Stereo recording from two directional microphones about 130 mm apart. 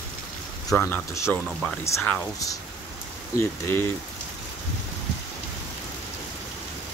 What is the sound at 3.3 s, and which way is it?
Speech, 20° left (ahead or behind).